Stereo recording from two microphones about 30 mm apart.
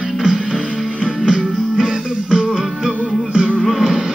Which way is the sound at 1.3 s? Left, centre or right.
Right.